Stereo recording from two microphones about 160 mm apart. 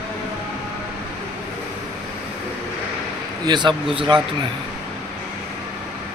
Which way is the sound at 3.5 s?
30° right (ahead or behind).